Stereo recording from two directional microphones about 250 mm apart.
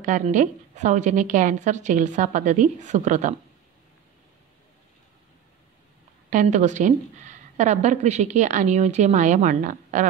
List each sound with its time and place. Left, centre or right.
0.0 s a woman's voice: right
6.3 s a woman's voice: right